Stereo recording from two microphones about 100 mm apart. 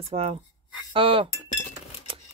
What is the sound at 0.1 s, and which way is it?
Speech, 90° right.